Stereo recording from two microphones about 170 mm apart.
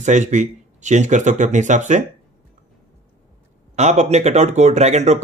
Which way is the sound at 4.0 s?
40° right (ahead or behind).